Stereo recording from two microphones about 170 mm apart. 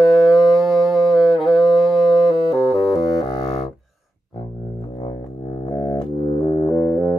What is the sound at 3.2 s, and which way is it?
Music, 25° left (ahead or behind).